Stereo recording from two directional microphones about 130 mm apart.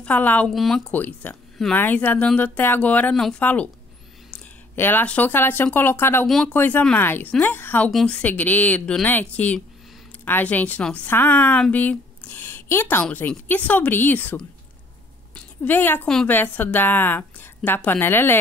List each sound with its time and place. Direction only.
0.0 s a woman's voice: 10° left (ahead or behind)
0.5 s speech: centre (ahead or behind)
0.9 s a woman's voice: 15° left (ahead or behind)
6.2 s speech: centre (ahead or behind)
6.5 s a woman's voice: 15° left (ahead or behind)
15.3 s a sound: 15° left (ahead or behind)
16.1 s speech: 5° left (ahead or behind)
16.3 s a woman's voice: 15° left (ahead or behind)